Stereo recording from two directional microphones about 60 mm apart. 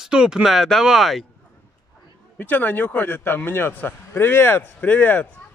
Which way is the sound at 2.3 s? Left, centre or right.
Left.